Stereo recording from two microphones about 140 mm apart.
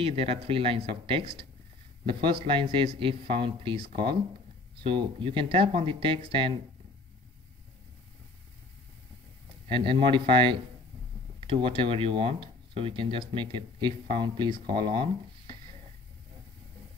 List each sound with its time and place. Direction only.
0.0 s a man's voice: 45° right (ahead or behind)
9.7 s a man's voice: 35° right (ahead or behind)